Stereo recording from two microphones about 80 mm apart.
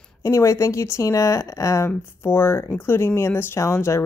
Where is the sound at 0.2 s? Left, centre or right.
Left.